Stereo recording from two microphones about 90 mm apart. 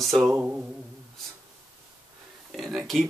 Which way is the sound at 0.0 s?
Centre (ahead or behind).